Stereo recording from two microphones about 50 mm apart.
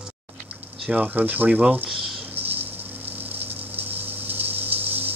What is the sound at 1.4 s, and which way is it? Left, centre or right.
Speech, centre.